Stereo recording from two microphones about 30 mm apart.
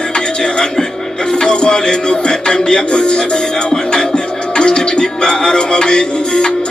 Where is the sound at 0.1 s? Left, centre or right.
Left.